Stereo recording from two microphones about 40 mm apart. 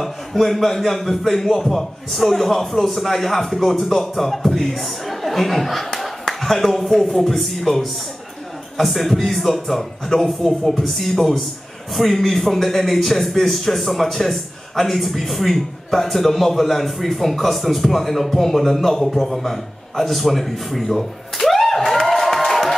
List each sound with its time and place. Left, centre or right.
0.0 s a man's voice: centre